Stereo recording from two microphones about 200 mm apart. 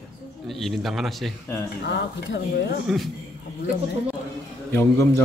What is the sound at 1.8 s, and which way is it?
Speech, 60° left (ahead or behind).